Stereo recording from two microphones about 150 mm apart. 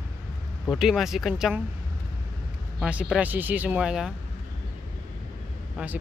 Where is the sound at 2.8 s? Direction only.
5° right (ahead or behind).